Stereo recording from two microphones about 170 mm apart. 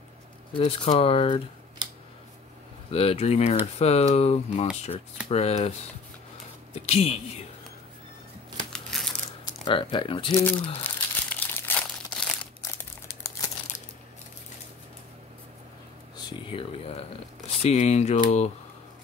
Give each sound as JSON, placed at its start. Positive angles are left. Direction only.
{"t": 0.5, "sound": "speech", "side_deg": 30}
{"t": 2.9, "sound": "speech", "side_deg": 35}
{"t": 6.7, "sound": "a sound", "side_deg": 35}
{"t": 8.7, "sound": "crushing", "side_deg": 5}
{"t": 9.7, "sound": "speech", "side_deg": 30}
{"t": 10.4, "sound": "crumpling", "side_deg": 10}
{"t": 16.2, "sound": "a sound", "side_deg": 30}
{"t": 17.6, "sound": "speech", "side_deg": 40}